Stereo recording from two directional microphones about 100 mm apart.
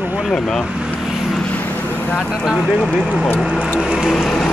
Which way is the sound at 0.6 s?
5° right (ahead or behind).